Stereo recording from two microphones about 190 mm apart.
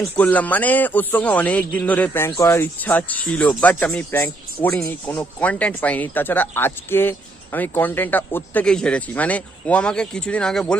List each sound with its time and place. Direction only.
0.0 s a man's voice: 10° left (ahead or behind)